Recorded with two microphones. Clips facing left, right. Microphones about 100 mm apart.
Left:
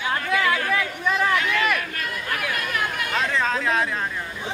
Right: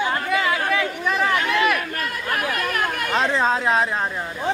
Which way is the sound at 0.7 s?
5° right (ahead or behind).